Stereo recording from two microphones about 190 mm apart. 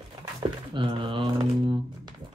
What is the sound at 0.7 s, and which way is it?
Speech, 25° right (ahead or behind).